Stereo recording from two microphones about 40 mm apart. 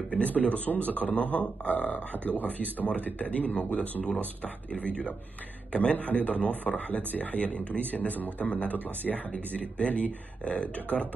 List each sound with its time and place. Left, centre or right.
0.1 s a man's voice: left
9.1 s speech: centre
9.6 s a man's voice: left